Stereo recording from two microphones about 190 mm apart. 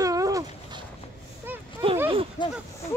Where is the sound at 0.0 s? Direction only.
15° right (ahead or behind).